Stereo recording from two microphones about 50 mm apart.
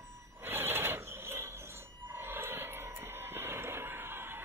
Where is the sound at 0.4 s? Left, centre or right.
Right.